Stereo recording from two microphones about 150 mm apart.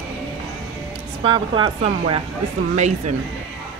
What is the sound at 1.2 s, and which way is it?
Speech, 35° right (ahead or behind).